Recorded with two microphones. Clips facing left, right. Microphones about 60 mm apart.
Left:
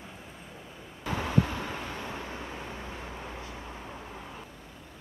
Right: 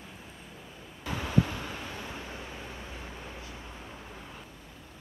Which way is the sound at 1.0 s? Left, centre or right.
Left.